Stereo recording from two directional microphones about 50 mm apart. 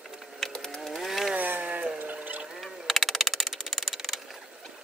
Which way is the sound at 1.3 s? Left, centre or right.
Right.